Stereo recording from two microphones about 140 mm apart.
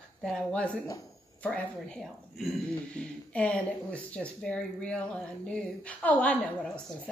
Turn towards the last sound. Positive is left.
turn(degrees=10)  # may be behind; listen again after turning